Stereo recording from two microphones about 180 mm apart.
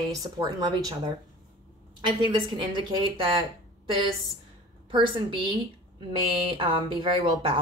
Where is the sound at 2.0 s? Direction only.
25° right (ahead or behind).